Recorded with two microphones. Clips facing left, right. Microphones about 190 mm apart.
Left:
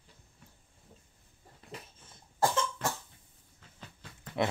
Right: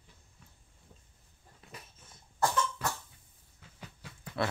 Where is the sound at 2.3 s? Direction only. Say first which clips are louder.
Left 1 dB; 25° left (ahead or behind).